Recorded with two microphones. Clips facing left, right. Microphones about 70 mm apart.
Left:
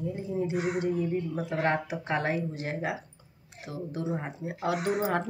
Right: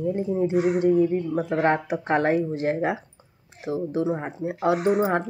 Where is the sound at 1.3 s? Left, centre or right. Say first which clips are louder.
Right 6 dB; right.